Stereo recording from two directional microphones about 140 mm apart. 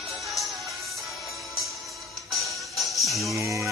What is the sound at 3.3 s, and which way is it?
Music, 20° right (ahead or behind).